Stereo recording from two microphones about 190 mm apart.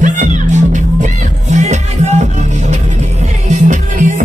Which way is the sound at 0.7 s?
40° right (ahead or behind).